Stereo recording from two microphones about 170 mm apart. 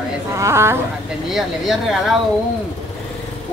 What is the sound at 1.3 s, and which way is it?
Speech, centre (ahead or behind).